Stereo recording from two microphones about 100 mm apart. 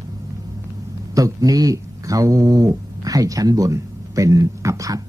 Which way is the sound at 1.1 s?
35° right (ahead or behind).